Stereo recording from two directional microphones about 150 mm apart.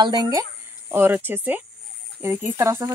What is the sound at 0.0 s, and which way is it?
Speech, 25° right (ahead or behind).